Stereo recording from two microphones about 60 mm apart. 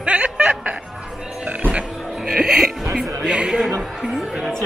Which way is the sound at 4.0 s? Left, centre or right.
Centre.